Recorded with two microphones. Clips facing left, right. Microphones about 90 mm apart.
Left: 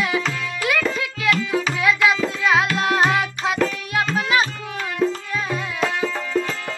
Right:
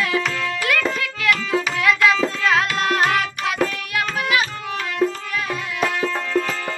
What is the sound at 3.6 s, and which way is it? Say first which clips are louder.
Tabla: left 1 dB; 25° left (ahead or behind).